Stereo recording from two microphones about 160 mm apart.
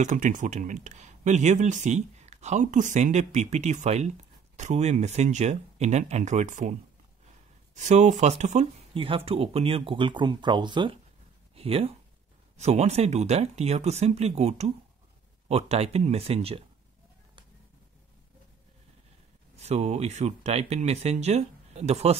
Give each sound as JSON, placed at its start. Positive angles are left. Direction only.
{"t": 0.0, "sound": "speech", "side_deg": -55}
{"t": 7.7, "sound": "speech", "side_deg": -45}
{"t": 19.5, "sound": "speech", "side_deg": -45}